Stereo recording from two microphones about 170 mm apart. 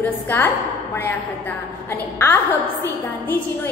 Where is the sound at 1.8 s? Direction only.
15° left (ahead or behind).